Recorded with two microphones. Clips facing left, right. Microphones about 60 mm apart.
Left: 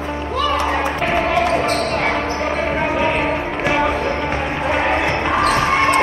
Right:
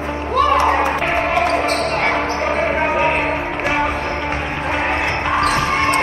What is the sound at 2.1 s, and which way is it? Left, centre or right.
Music, right.